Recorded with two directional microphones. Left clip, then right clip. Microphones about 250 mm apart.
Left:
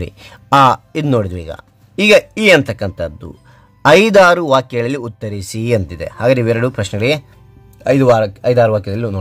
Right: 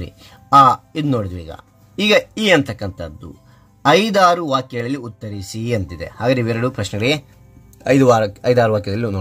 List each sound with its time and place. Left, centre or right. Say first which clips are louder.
0.0 s speech: left 7 dB; left; by 9.2 s centre